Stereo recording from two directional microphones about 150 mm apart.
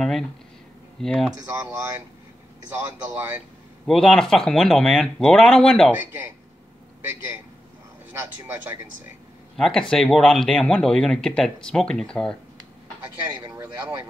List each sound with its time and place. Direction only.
1.0 s speech: centre (ahead or behind)
1.4 s speech: 20° right (ahead or behind)
3.8 s speech: centre (ahead or behind)
5.9 s a man's voice: 15° right (ahead or behind)
9.6 s speech: 5° left (ahead or behind)